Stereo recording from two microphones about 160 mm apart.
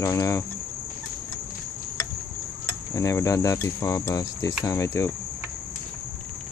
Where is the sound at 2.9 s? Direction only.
20° left (ahead or behind).